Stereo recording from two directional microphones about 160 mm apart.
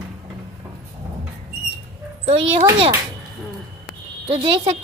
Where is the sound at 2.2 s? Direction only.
40° right (ahead or behind).